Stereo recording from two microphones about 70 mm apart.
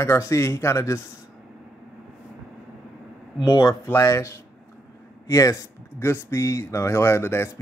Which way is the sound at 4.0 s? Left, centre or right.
Left.